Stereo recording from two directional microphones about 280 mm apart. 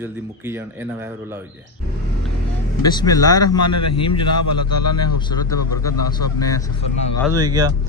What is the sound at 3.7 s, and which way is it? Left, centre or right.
A man's voice, left.